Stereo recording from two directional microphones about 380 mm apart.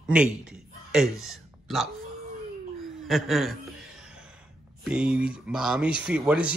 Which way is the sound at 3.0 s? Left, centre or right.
Centre.